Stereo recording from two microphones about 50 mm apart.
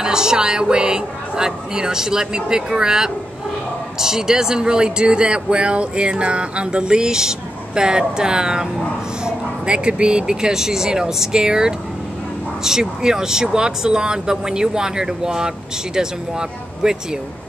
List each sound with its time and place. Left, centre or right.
0.0 s speech: centre